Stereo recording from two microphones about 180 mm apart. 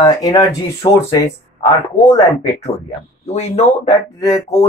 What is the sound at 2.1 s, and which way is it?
Speech, 35° left (ahead or behind).